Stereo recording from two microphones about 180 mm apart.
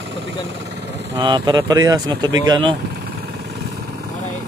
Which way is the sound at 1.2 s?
25° right (ahead or behind).